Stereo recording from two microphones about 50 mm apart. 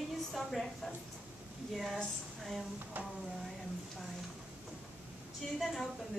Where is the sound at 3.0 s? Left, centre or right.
Right.